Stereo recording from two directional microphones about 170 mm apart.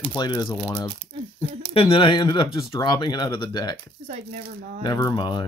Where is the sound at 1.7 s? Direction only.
35° left (ahead or behind).